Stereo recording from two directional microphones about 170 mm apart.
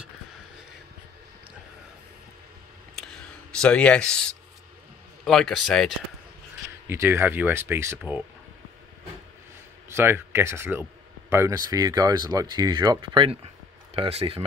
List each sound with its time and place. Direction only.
3.6 s a man's voice: 5° left (ahead or behind)
6.9 s speech: 15° right (ahead or behind)
9.8 s speech: 15° right (ahead or behind); by 14.4 s 35° right (ahead or behind)